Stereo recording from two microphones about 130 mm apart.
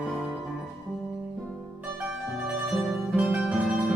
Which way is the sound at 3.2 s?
5° right (ahead or behind).